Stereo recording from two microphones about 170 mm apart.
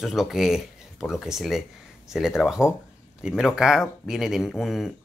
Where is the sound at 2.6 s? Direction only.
15° left (ahead or behind).